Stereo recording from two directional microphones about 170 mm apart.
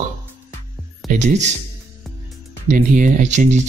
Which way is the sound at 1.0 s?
45° right (ahead or behind).